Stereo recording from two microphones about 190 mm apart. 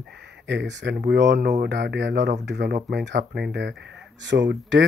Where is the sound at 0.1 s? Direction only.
65° right (ahead or behind).